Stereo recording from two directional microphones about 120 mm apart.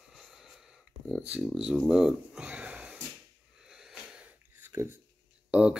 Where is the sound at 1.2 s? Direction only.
5° right (ahead or behind).